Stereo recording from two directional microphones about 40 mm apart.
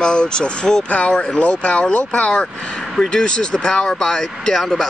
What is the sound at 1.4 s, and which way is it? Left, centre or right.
Speech, left.